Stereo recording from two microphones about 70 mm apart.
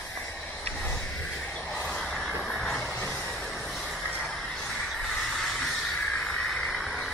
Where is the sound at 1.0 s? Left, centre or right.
Centre.